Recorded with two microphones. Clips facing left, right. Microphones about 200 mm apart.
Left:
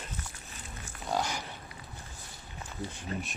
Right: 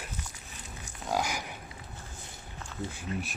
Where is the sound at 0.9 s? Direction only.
15° right (ahead or behind).